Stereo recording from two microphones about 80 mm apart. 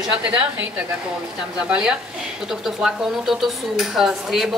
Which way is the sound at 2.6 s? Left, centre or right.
Centre.